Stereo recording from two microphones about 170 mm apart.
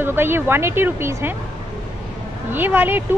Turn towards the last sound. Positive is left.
turn(degrees=-10)  # may be behind; listen again after turning